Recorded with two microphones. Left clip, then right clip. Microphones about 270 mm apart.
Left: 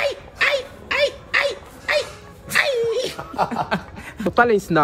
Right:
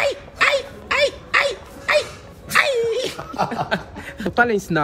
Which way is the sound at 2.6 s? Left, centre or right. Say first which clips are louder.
Left 1 dB; centre.